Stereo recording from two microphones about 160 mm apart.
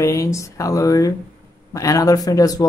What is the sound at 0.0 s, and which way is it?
Speech, 20° left (ahead or behind).